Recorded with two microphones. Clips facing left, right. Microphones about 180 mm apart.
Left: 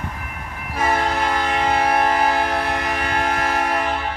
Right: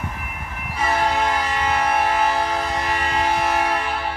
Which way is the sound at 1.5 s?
55° left (ahead or behind).